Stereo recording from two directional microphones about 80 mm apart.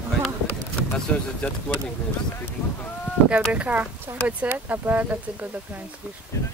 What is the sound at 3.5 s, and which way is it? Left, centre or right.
Speech, centre.